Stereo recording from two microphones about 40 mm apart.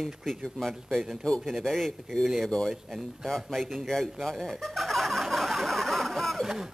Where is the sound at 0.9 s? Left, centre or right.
Centre.